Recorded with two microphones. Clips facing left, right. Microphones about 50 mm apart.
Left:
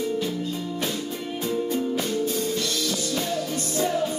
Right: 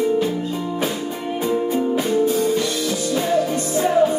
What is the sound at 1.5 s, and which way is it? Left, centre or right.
Music, centre.